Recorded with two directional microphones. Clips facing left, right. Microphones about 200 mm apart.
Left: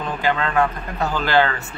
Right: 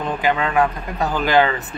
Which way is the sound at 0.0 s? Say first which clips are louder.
Right 2 dB; 15° right (ahead or behind).